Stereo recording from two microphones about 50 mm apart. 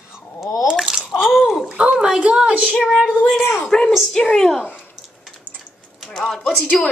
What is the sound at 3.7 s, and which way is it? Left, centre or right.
Speech, centre.